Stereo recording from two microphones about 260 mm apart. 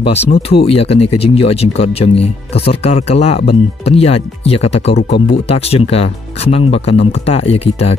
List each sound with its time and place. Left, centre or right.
0.0 s speech: left
4.9 s speech: left
5.5 s speech: left